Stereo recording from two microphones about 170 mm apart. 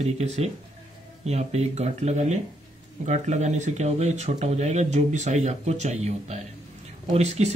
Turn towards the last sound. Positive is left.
turn(degrees=-40)  # may be behind; listen again after turning